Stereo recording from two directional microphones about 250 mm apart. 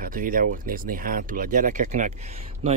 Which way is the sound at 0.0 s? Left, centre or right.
Right.